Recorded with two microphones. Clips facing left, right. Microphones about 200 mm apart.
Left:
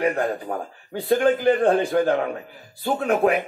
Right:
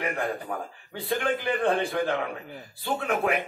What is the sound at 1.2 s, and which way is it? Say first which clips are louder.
Speech: left 8 dB; 45° left (ahead or behind).